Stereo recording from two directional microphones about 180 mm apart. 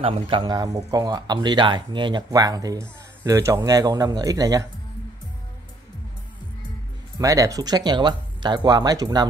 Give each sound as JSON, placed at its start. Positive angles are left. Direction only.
{"t": 0.0, "sound": "speech", "side_deg": -30}
{"t": 7.2, "sound": "speech", "side_deg": -20}